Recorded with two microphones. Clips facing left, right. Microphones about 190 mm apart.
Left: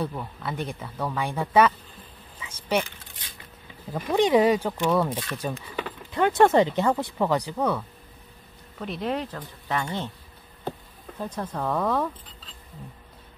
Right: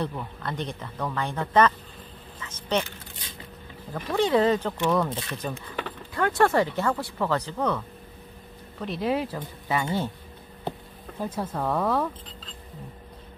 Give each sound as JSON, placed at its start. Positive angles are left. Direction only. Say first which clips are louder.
{"t": 0.0, "sound": "speech", "louder": "even", "side_deg": 5}
{"t": 3.9, "sound": "speech", "louder": "left 3 dB", "side_deg": 15}
{"t": 8.7, "sound": "speech", "louder": "right 2 dB", "side_deg": 0}
{"t": 11.1, "sound": "speech", "louder": "right 1 dB", "side_deg": -10}